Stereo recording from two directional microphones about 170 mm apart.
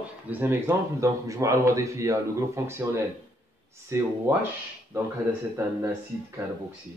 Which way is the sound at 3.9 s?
15° right (ahead or behind).